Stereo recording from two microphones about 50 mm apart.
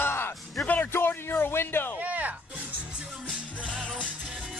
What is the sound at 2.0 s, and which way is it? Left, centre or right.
Music, right.